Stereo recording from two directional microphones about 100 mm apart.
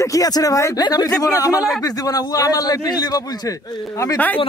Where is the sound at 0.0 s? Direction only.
35° left (ahead or behind).